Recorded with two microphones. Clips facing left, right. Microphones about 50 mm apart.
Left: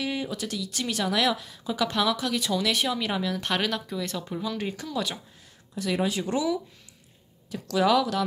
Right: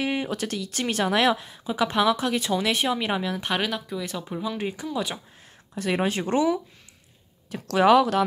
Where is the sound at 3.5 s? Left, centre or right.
Centre.